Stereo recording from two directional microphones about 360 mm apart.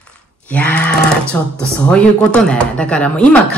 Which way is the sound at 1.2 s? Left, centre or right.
Centre.